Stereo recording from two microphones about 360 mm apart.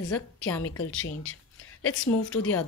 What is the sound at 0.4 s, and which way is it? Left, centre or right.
Speech, left.